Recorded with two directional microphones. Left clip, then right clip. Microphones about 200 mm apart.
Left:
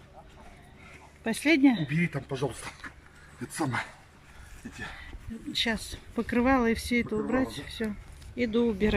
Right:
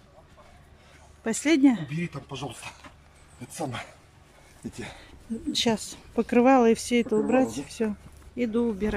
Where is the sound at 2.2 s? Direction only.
20° left (ahead or behind).